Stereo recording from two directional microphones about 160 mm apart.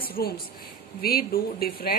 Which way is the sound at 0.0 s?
70° left (ahead or behind).